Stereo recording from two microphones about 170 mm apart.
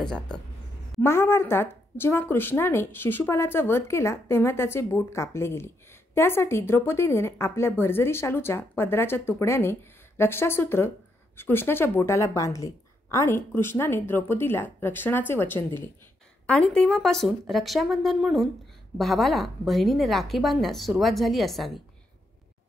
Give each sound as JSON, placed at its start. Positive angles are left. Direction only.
{"t": 0.0, "sound": "a woman's voice", "side_deg": 5}